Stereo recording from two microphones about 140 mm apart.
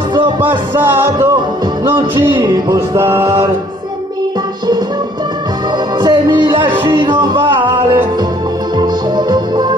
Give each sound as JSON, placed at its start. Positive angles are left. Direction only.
{"t": 0.1, "sound": "music", "side_deg": -35}
{"t": 0.5, "sound": "music", "side_deg": -15}
{"t": 2.1, "sound": "music", "side_deg": -35}
{"t": 5.9, "sound": "music", "side_deg": -35}